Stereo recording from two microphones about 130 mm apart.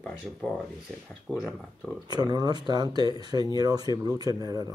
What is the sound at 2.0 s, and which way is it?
Speech, 35° right (ahead or behind).